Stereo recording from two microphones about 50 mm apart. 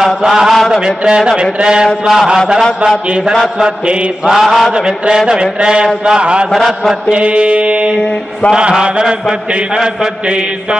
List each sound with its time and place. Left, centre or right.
0.0 s mantra: centre
4.3 s mantra: centre
4.7 s mantra: centre
6.5 s mantra: centre
7.1 s mantra: right